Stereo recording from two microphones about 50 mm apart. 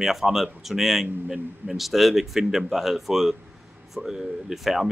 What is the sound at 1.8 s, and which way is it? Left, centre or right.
Speech, centre.